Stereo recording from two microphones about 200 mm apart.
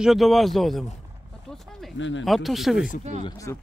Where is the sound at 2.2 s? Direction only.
Centre (ahead or behind).